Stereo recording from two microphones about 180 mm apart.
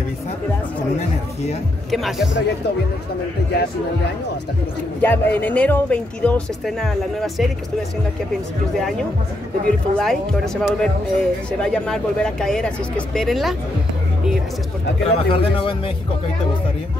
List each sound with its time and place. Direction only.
1.9 s speech: centre (ahead or behind)
5.0 s speech: 10° left (ahead or behind)
9.7 s speech: centre (ahead or behind)
15.0 s speech: 30° left (ahead or behind)